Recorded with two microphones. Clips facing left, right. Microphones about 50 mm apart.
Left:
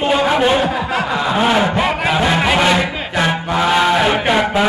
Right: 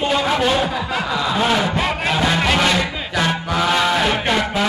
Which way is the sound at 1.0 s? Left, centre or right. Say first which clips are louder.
Left 3 dB; left.